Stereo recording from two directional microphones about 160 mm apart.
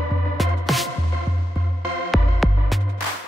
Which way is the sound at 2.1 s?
Centre (ahead or behind).